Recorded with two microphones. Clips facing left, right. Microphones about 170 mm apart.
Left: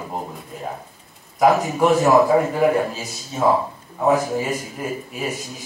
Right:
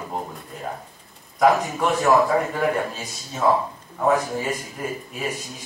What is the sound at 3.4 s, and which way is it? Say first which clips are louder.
Speech: left 2 dB; 15° left (ahead or behind).